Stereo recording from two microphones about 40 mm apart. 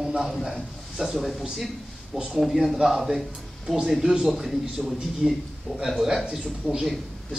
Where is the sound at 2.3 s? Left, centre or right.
Centre.